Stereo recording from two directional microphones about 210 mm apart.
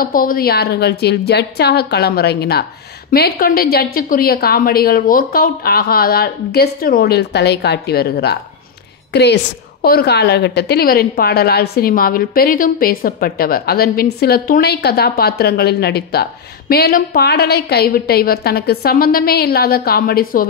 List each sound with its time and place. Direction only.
0.0 s a woman's voice: 40° left (ahead or behind)